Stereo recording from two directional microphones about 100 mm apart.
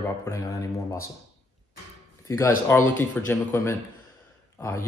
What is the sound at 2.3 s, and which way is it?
Speech, 25° left (ahead or behind).